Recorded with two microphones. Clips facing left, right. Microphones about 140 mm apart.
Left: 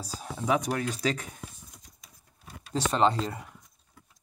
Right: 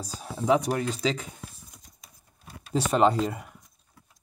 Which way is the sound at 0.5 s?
25° right (ahead or behind).